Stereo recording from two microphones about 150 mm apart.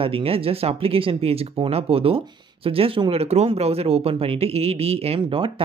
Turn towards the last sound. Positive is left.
turn(degrees=-35)  # may be behind; listen again after turning